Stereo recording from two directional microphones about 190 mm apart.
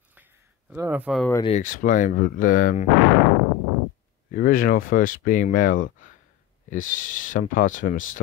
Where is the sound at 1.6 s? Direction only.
45° left (ahead or behind).